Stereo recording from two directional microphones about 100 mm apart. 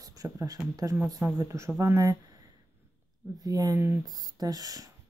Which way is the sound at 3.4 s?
40° right (ahead or behind).